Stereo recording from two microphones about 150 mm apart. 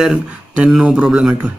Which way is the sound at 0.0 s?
5° right (ahead or behind).